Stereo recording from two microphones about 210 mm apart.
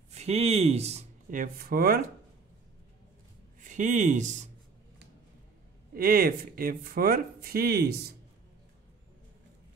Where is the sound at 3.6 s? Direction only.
35° right (ahead or behind).